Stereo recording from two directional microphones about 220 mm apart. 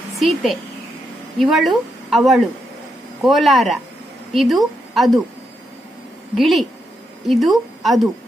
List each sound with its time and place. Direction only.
0.2 s a woman's voice: centre (ahead or behind)
6.3 s speech: centre (ahead or behind)